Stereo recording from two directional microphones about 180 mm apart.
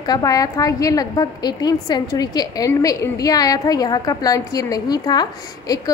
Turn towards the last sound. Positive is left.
turn(degrees=20)  # may be behind; listen again after turning